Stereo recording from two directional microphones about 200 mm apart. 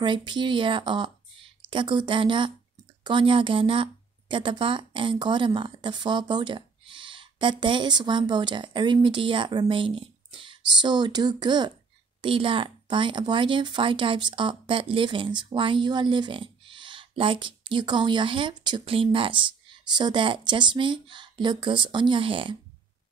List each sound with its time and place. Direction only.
0.0 s speech: 25° right (ahead or behind)